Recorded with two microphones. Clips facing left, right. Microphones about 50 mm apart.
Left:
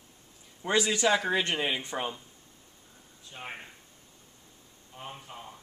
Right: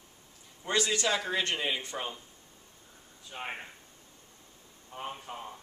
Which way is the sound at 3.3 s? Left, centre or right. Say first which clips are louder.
Right 3 dB; right.